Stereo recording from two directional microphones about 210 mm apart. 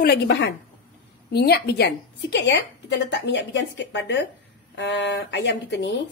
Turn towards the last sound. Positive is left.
turn(degrees=55)  # may be behind; listen again after turning